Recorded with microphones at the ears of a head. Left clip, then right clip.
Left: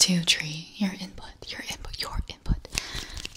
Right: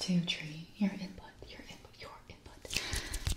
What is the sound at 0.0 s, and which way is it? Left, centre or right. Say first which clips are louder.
Speech: left 14 dB; left.